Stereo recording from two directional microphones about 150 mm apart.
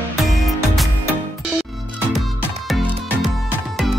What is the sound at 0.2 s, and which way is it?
Music, centre (ahead or behind).